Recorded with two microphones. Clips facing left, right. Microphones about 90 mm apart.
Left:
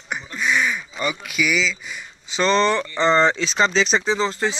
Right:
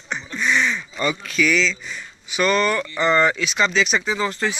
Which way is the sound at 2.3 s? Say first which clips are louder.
Left 1 dB; 25° left (ahead or behind).